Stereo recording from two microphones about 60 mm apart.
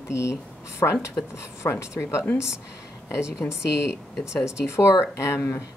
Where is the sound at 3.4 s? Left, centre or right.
Left.